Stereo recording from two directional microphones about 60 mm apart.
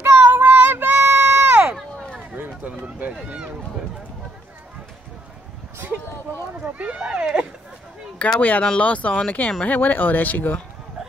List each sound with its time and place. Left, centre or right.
0.0 s child singing: right
2.3 s run: right
2.7 s a sound: right
3.3 s run: centre
6.6 s a sound: right
8.2 s speech: left
9.7 s speech: left